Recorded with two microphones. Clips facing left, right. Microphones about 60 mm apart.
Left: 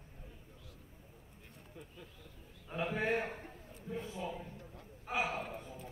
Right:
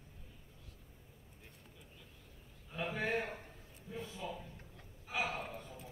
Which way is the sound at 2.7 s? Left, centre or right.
Left.